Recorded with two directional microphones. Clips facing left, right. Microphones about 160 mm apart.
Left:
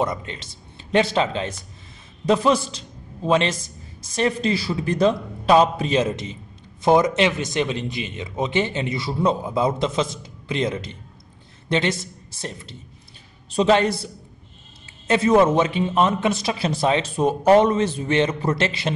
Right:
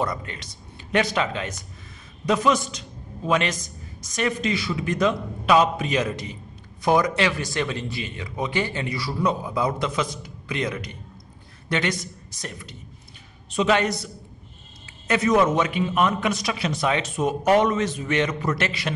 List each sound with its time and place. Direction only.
0.0 s a man's voice: 25° left (ahead or behind)
15.0 s a man's voice: 30° left (ahead or behind)